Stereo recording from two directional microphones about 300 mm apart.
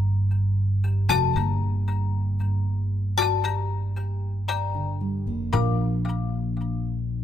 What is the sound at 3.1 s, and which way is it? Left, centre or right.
Music, centre.